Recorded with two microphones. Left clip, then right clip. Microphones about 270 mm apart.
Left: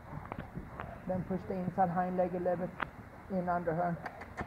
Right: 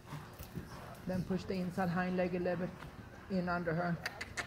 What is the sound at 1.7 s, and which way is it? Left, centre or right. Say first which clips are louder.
Speech: left 6 dB; right.